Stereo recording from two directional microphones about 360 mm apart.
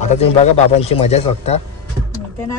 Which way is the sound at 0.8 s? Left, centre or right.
Centre.